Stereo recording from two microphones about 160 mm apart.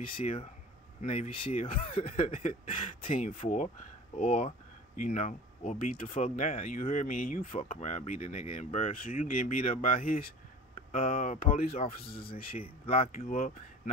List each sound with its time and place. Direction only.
0.0 s speech: 55° left (ahead or behind)
1.0 s speech: 40° left (ahead or behind)
11.5 s speech: 40° left (ahead or behind)
12.4 s speech: 60° left (ahead or behind)
12.8 s speech: 35° left (ahead or behind)
13.2 s speech: 55° left (ahead or behind)